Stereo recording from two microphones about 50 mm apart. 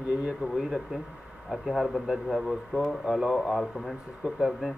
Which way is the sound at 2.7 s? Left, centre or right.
Right.